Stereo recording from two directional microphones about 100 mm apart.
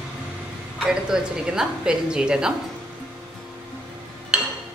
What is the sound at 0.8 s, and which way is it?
A woman's voice, 5° right (ahead or behind).